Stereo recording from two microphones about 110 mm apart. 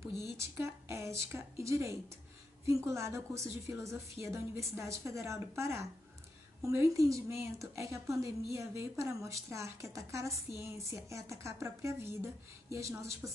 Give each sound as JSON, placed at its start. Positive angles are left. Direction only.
{"t": 0.4, "sound": "a woman's voice", "side_deg": -25}